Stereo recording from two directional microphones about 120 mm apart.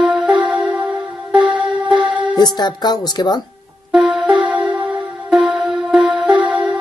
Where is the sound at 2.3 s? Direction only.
35° left (ahead or behind).